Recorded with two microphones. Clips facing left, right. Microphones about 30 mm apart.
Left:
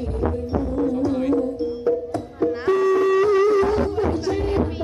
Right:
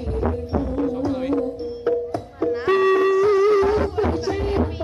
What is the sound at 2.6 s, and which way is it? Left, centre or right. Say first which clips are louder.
Wind instrument: right 2 dB; right.